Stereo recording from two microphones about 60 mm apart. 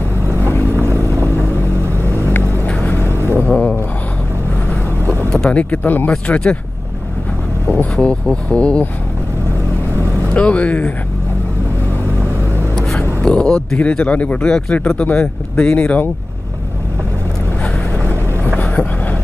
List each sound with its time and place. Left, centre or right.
0.3 s vehicle: right
2.3 s vehicle: left
3.1 s vehicle: right
3.3 s a sound: left
5.3 s speech: centre
7.6 s vehicle: left
7.9 s speech: centre
10.3 s speech: left
13.2 s speech: centre